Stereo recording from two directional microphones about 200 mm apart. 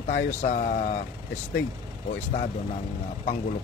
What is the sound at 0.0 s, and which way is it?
Speech, 35° left (ahead or behind).